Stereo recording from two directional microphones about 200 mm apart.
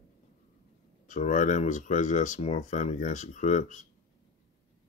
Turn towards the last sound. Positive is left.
turn(degrees=40)  # may be behind; listen again after turning